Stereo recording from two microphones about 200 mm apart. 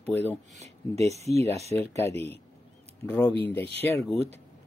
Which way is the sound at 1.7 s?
15° left (ahead or behind).